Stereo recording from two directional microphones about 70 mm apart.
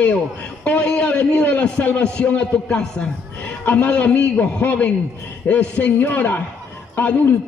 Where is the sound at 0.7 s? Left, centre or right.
Centre.